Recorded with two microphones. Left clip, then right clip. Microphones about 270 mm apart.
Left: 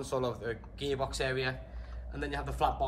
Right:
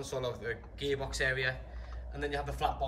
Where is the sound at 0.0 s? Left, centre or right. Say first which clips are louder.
Left 3 dB; centre.